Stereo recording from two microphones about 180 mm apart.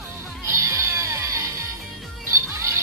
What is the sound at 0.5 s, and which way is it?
Music, 15° right (ahead or behind).